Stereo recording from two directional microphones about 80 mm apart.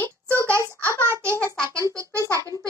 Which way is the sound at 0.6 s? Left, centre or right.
Left.